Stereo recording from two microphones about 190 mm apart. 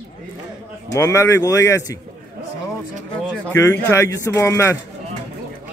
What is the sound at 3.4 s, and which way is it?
Speech, 10° left (ahead or behind).